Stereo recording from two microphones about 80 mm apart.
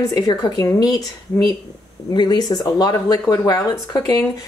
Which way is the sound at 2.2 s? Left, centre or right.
Left.